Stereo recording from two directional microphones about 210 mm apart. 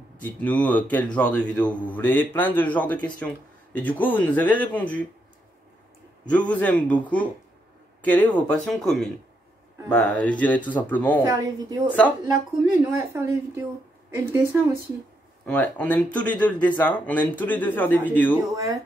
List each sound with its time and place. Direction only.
0.2 s speech: 5° left (ahead or behind)
6.5 s speech: 5° left (ahead or behind)
11.2 s a woman's voice: 20° right (ahead or behind)
15.4 s speech: 5° left (ahead or behind)
18.5 s a woman's voice: 15° right (ahead or behind)